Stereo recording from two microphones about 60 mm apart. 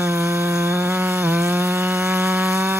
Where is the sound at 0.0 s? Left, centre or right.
Right.